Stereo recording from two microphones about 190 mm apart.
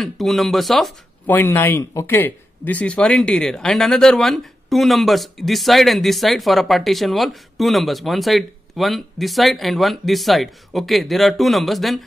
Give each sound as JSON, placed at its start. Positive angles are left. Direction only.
{"t": 0.0, "sound": "speech", "side_deg": 0}